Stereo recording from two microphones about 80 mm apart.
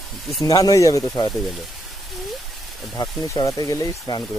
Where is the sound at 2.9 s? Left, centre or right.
Left.